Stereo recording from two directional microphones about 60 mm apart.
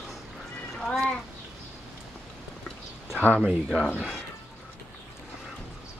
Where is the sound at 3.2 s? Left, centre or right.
Left.